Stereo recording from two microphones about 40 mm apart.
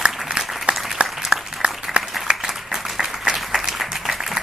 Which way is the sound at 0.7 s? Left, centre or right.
Right.